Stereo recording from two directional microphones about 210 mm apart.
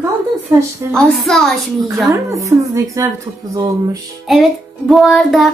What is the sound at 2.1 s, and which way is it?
A woman's voice, 15° right (ahead or behind).